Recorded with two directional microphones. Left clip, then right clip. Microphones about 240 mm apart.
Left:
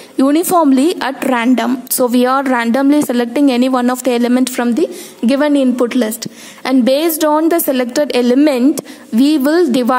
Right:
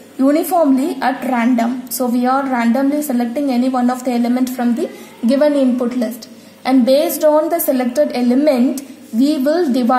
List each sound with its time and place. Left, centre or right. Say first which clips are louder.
0.6 s a woman's voice: left 3 dB; left